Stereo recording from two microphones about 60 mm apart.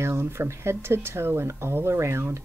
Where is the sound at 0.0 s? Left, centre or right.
Right.